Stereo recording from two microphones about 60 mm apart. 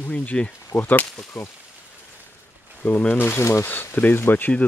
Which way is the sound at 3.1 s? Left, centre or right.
Left.